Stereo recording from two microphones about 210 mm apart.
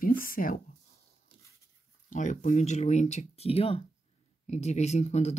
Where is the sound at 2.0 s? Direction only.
35° left (ahead or behind).